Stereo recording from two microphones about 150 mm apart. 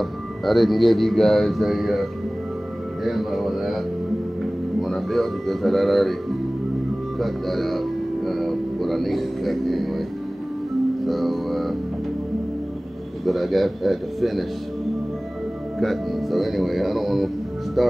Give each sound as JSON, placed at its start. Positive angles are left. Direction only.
{"t": 0.0, "sound": "speech", "side_deg": 0}
{"t": 4.8, "sound": "speech", "side_deg": 0}
{"t": 7.2, "sound": "speech", "side_deg": 0}
{"t": 11.1, "sound": "speech", "side_deg": 0}
{"t": 13.2, "sound": "speech", "side_deg": 0}
{"t": 15.8, "sound": "speech", "side_deg": 0}